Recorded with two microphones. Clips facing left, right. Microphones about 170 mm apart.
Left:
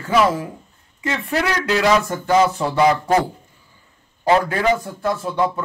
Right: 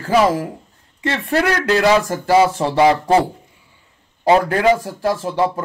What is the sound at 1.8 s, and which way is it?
Music, 35° right (ahead or behind).